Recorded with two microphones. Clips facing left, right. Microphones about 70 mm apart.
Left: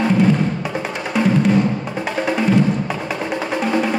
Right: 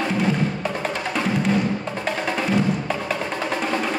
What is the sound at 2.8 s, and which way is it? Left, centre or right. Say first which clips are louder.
Percussion: left 2 dB; centre.